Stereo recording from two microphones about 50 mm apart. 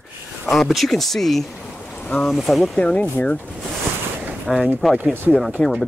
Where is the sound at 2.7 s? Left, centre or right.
Left.